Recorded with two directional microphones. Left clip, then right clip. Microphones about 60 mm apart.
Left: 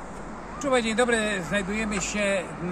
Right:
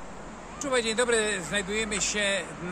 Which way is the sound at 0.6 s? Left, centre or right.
Right.